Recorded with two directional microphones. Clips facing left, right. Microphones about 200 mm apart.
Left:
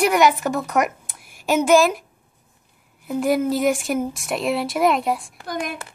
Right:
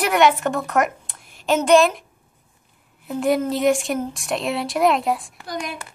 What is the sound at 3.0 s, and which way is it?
A woman's voice, centre (ahead or behind).